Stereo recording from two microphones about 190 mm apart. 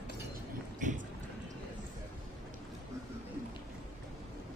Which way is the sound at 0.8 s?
40° right (ahead or behind).